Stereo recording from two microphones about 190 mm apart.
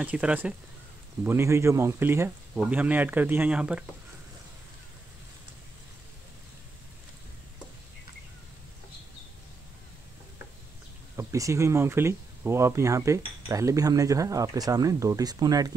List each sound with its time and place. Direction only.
0.0 s speech: 5° right (ahead or behind)
11.1 s speech: 15° right (ahead or behind)